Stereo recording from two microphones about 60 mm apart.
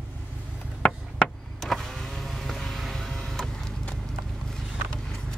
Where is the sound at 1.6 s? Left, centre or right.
Centre.